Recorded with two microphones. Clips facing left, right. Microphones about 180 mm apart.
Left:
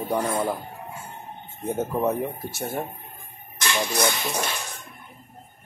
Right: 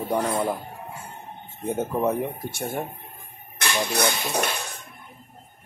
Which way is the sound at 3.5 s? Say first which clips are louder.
Even; 60° right (ahead or behind).